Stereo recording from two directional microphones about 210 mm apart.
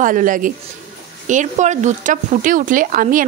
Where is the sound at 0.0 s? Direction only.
40° right (ahead or behind).